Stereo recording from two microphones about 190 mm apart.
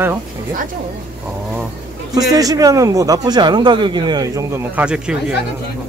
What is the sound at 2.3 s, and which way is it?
A man's voice, 20° right (ahead or behind).